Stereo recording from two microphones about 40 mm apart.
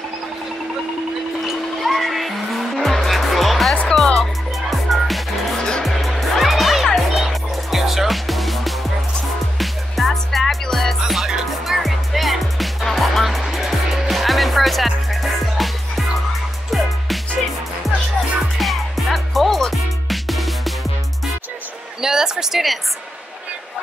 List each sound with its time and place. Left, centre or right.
1.4 s music: centre
5.6 s music: centre
5.9 s music: centre
18.6 s music: centre
22.0 s a sound: centre